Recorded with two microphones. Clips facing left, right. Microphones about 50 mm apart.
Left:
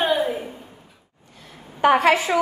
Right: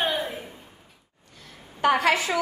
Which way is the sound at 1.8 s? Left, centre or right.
Left.